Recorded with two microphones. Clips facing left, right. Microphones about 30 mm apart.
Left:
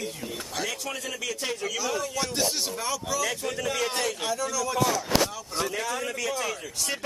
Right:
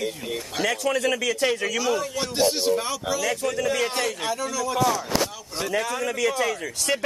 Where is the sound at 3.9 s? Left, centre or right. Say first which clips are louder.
Right 2 dB; centre.